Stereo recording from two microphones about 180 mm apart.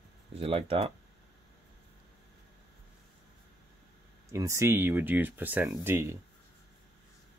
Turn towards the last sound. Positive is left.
turn(degrees=-15)  # may be behind; listen again after turning